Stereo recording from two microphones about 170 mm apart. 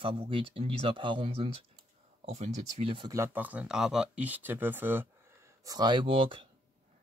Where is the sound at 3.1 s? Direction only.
15° right (ahead or behind).